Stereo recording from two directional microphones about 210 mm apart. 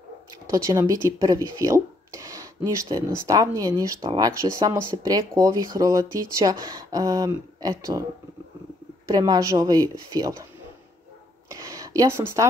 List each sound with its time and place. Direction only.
0.5 s speech: 15° right (ahead or behind)
9.1 s speech: 15° right (ahead or behind)
11.4 s a sound: 15° right (ahead or behind)